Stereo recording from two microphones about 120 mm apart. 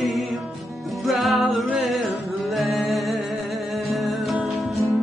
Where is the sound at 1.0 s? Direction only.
Centre (ahead or behind).